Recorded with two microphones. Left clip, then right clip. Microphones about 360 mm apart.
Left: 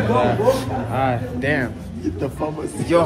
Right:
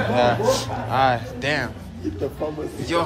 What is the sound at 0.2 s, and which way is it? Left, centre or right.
Speech, centre.